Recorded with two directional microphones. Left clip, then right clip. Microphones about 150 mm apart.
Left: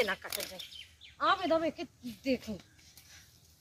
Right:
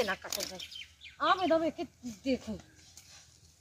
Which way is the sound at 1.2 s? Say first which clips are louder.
Right 1 dB; 15° left (ahead or behind).